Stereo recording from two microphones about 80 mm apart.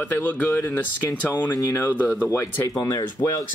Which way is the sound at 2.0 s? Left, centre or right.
Centre.